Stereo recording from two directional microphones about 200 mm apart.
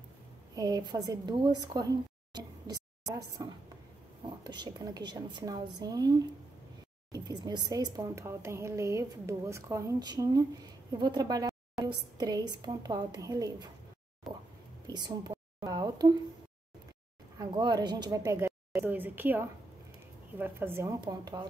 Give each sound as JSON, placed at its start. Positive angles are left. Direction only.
{"t": 0.6, "sound": "a woman's voice", "side_deg": -20}
{"t": 2.3, "sound": "a sound", "side_deg": -20}
{"t": 4.5, "sound": "a woman's voice", "side_deg": -20}
{"t": 14.9, "sound": "speech", "side_deg": -20}
{"t": 17.4, "sound": "a woman's voice", "side_deg": -20}